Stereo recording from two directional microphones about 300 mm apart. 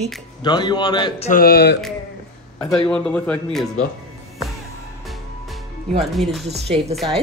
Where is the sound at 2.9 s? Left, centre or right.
Centre.